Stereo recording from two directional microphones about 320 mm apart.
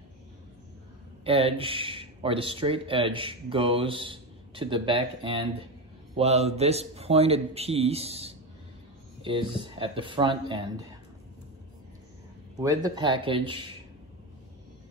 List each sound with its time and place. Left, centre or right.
1.2 s a man's voice: centre
12.5 s speech: centre